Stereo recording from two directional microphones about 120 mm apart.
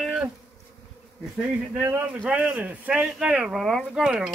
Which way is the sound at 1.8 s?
20° right (ahead or behind).